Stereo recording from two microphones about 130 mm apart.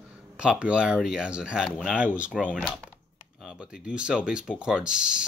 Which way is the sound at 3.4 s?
5° right (ahead or behind).